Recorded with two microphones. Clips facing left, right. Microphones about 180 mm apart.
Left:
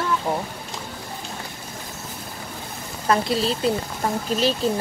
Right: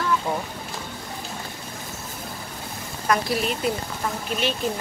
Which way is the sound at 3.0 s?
25° left (ahead or behind).